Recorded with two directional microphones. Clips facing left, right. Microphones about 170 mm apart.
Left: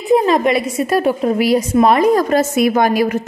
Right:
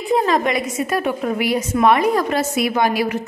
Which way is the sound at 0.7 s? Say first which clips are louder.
Left 5 dB; 35° left (ahead or behind).